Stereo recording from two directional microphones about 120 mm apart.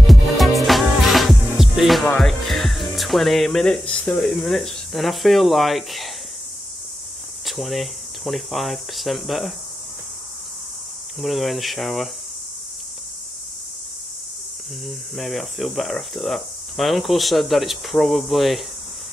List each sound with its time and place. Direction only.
0.0 s music: centre (ahead or behind)
7.4 s speech: centre (ahead or behind)
11.1 s speech: centre (ahead or behind)
14.9 s speech: centre (ahead or behind)